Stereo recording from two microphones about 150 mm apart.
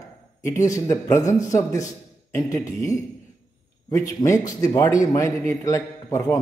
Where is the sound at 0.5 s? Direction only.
20° left (ahead or behind).